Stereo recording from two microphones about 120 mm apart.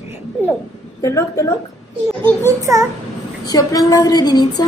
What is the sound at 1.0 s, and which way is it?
Speech, 25° left (ahead or behind).